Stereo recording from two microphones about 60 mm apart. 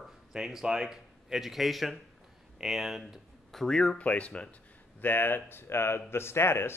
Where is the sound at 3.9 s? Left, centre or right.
Left.